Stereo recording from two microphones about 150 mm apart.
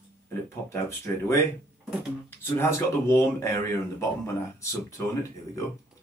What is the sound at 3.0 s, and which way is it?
Speech, 20° left (ahead or behind).